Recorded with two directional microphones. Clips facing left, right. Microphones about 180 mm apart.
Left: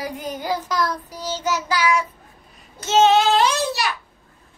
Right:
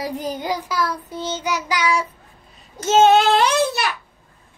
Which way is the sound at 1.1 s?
25° right (ahead or behind).